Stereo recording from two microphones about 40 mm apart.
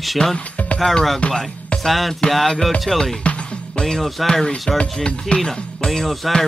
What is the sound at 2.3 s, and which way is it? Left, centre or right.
Speech, centre.